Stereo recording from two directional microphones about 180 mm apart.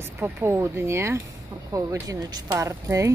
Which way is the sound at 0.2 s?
15° right (ahead or behind).